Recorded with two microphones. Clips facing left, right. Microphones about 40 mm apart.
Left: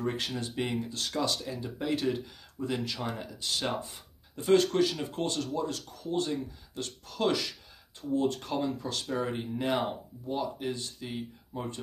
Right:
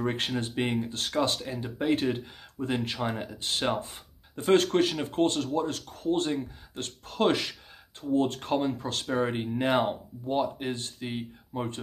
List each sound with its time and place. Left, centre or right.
0.0 s speech: right